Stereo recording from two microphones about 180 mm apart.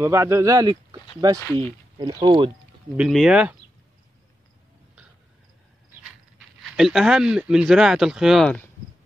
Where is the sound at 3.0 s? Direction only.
Centre (ahead or behind).